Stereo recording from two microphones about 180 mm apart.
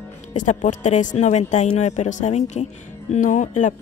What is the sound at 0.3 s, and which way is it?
Speech, 45° left (ahead or behind).